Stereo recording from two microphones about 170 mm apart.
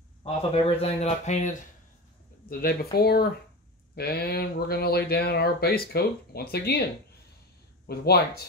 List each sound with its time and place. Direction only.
0.2 s speech: 35° left (ahead or behind)
2.4 s speech: 60° left (ahead or behind)